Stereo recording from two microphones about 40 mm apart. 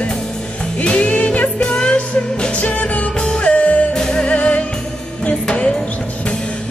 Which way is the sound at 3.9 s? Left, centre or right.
Centre.